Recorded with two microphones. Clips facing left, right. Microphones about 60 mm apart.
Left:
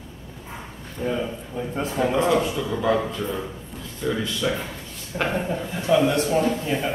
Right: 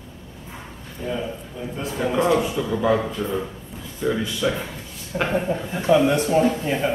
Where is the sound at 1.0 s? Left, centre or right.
Centre.